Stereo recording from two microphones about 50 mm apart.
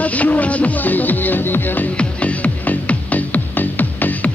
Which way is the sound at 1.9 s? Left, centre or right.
Left.